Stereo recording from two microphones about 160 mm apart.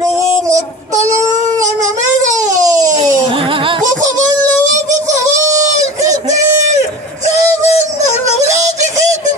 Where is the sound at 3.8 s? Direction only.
50° right (ahead or behind).